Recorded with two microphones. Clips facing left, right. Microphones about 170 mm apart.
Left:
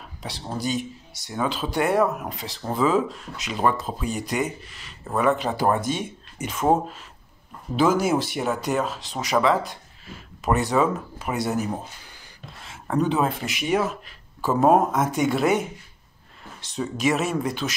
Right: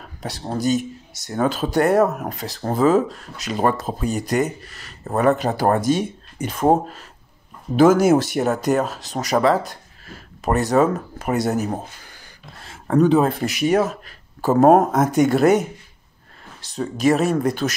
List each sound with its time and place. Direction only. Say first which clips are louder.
0.2 s speech: right 6 dB; 45° right (ahead or behind)
16.7 s speech: right 5 dB; 40° right (ahead or behind)